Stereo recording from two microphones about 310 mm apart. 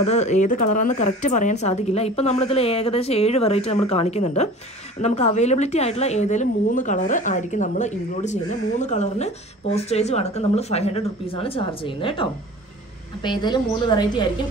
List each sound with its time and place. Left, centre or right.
0.0 s a woman's voice: left